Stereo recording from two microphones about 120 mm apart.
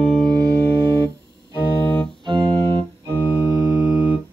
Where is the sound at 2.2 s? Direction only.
40° right (ahead or behind).